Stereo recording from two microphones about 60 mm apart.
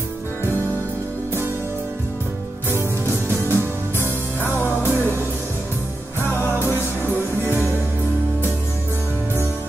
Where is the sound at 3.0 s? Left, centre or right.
Left.